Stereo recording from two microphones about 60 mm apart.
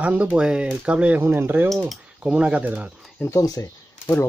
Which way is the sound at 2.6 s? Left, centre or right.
Right.